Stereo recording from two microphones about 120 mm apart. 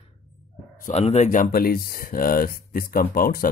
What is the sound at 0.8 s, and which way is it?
Speech, 75° left (ahead or behind).